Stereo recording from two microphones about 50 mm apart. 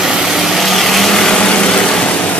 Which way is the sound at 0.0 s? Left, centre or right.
Centre.